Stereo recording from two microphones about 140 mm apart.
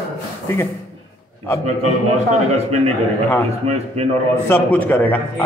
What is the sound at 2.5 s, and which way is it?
A man's voice, 50° right (ahead or behind).